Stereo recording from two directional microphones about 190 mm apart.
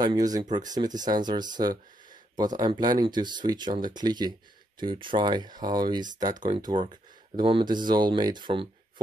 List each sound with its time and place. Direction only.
0.0 s speech: 20° right (ahead or behind)